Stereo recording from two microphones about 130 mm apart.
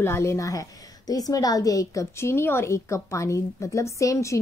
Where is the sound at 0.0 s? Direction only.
20° left (ahead or behind).